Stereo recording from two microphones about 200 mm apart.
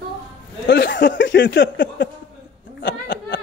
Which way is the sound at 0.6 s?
60° left (ahead or behind).